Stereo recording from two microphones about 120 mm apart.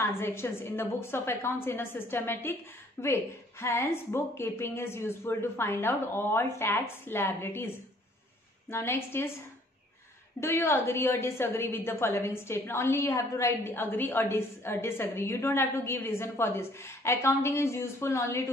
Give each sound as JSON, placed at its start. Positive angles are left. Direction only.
{"t": 0.0, "sound": "a woman's voice", "side_deg": 20}
{"t": 10.4, "sound": "a woman's voice", "side_deg": 20}
{"t": 13.5, "sound": "a woman's voice", "side_deg": 15}